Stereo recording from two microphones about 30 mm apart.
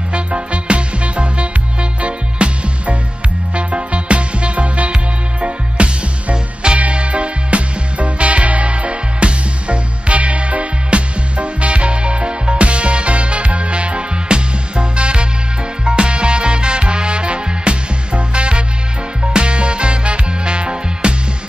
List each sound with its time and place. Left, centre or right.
0.1 s music: right
6.3 s music: right
6.8 s music: right